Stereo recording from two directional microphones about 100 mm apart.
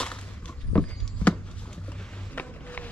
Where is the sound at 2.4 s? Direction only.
15° left (ahead or behind).